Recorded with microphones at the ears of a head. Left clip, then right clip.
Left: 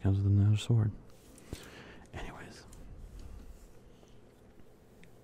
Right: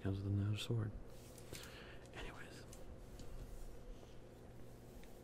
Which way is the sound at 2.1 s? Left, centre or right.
Left.